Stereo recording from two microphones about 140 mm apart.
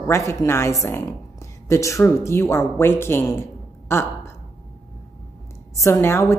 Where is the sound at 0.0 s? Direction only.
20° left (ahead or behind).